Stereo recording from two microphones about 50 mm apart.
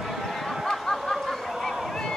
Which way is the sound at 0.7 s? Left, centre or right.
Centre.